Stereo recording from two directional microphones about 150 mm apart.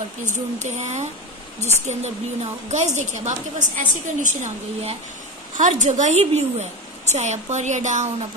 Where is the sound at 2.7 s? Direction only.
50° right (ahead or behind).